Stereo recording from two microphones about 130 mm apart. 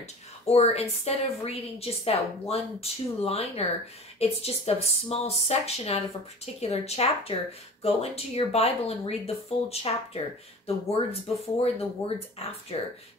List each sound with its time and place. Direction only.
0.5 s a woman's voice: 55° left (ahead or behind)